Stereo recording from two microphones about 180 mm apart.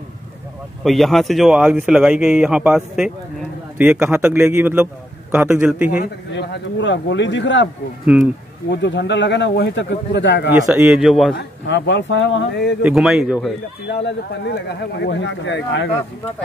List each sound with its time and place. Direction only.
0.8 s a man's voice: centre (ahead or behind)
6.3 s speech: 75° left (ahead or behind)
8.0 s speech: 5° right (ahead or behind)
8.6 s speech: 75° left (ahead or behind)
10.7 s speech: 5° right (ahead or behind)
11.3 s speech: 75° left (ahead or behind)
12.8 s speech: 5° right (ahead or behind)
13.8 s speech: 75° left (ahead or behind)